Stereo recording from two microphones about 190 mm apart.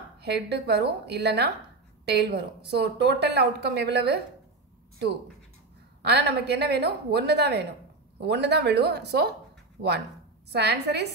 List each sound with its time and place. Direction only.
0.2 s a woman's voice: 60° right (ahead or behind)
6.0 s a woman's voice: 60° right (ahead or behind)